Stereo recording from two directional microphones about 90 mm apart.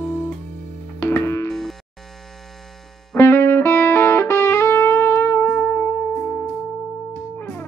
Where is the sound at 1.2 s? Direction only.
30° left (ahead or behind).